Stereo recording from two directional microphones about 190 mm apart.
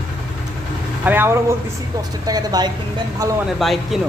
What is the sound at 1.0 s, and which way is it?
A woman's voice, 10° right (ahead or behind).